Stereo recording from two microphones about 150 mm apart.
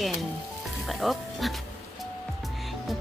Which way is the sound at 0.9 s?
Centre (ahead or behind).